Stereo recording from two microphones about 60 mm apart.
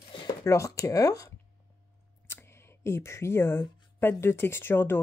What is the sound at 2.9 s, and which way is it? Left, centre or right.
Speech, left.